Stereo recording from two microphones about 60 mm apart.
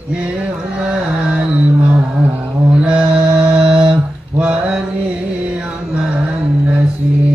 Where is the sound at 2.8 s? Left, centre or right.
Centre.